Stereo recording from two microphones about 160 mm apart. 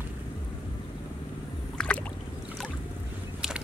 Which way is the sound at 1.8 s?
5° left (ahead or behind).